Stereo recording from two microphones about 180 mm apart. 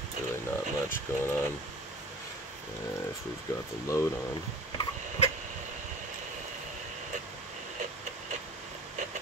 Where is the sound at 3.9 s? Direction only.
15° left (ahead or behind).